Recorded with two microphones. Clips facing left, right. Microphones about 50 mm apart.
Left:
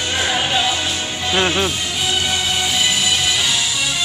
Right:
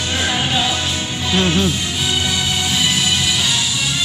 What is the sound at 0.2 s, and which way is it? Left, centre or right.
Music, centre.